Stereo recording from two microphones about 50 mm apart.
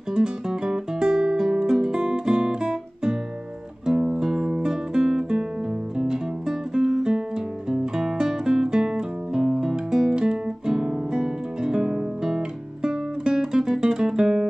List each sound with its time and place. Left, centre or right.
0.1 s music: centre
3.8 s guitar: centre
6.7 s music: centre